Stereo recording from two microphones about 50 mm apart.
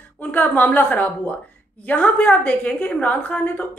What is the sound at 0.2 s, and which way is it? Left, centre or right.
A woman's voice, left.